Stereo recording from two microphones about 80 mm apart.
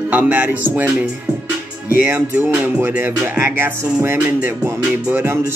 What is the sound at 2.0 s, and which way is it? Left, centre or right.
Music, right.